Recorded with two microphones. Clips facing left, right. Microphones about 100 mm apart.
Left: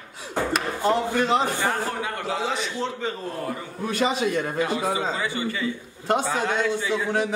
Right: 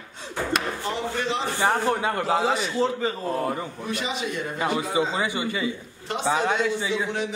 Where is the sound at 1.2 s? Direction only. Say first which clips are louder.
Left 5 dB; 45° left (ahead or behind).